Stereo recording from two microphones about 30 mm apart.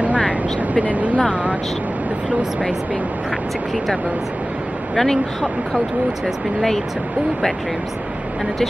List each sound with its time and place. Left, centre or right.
0.6 s speech: right
4.9 s speech: centre